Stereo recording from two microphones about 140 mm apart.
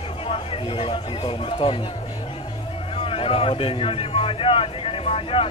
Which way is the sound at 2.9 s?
40° left (ahead or behind).